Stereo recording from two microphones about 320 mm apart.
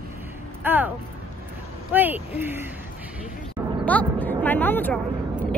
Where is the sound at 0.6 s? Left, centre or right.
Centre.